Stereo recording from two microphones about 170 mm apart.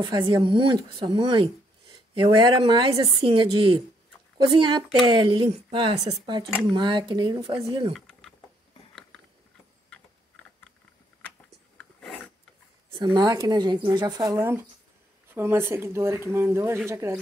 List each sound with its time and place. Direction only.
0.0 s speech: 30° right (ahead or behind)
7.9 s a sound: 5° left (ahead or behind)
9.8 s typing: 5° left (ahead or behind)
11.8 s filing: 5° left (ahead or behind)
12.9 s speech: 25° right (ahead or behind)